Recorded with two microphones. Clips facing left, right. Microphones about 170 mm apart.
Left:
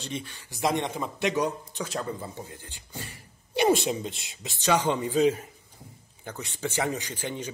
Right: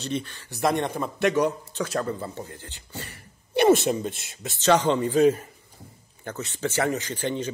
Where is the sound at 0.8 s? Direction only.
55° right (ahead or behind).